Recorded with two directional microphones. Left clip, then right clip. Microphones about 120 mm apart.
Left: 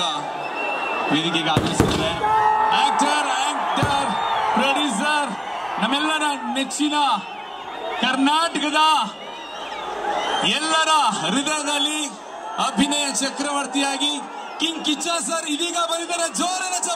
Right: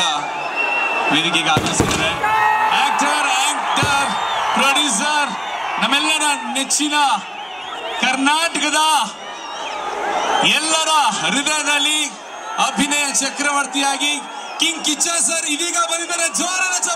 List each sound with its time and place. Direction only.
0.0 s slam: 20° right (ahead or behind)
2.2 s a sound: 30° right (ahead or behind)
2.8 s music: 15° right (ahead or behind)
4.6 s a man's voice: 20° right (ahead or behind)
10.4 s a man's voice: 20° right (ahead or behind)